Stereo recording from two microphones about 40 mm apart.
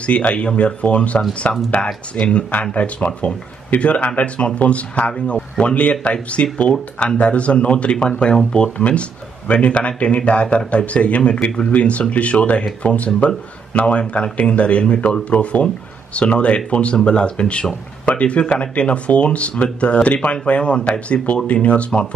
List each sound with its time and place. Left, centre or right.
0.0 s speech: left